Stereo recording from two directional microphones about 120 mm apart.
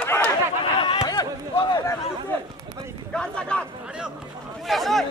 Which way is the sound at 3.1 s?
10° left (ahead or behind).